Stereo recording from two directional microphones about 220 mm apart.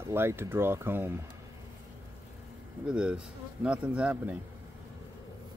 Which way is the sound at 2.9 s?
5° right (ahead or behind).